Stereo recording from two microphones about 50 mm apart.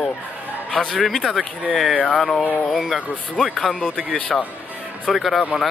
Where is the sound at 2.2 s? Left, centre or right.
Centre.